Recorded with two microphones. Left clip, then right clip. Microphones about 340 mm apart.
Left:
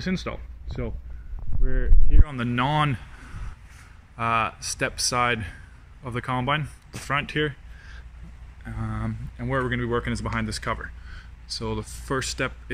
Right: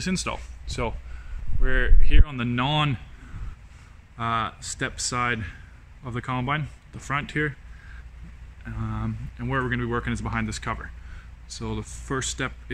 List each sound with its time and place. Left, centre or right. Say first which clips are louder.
0.0 s speech: right 2 dB; centre
1.6 s speech: right 8 dB; right
2.2 s speech: left 3 dB; centre
4.2 s speech: left 3 dB; centre
8.6 s speech: even; centre